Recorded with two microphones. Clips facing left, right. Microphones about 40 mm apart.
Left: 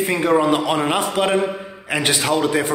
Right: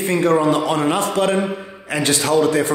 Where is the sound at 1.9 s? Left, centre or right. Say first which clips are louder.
Right 2 dB; left.